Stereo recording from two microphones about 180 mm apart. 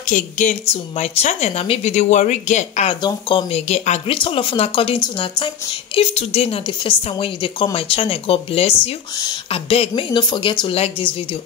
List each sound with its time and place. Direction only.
0.0 s a woman's voice: 45° left (ahead or behind)